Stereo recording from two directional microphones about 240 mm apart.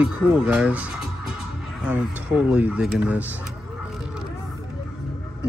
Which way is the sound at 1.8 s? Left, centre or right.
Centre.